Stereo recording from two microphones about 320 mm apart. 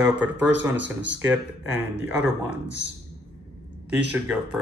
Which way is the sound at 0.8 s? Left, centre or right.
Right.